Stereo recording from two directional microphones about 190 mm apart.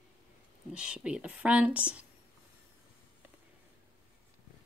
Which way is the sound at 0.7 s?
5° right (ahead or behind).